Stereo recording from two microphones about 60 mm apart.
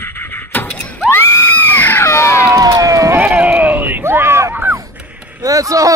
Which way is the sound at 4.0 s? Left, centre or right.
Right.